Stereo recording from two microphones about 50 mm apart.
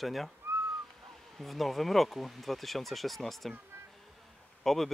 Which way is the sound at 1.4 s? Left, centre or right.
Centre.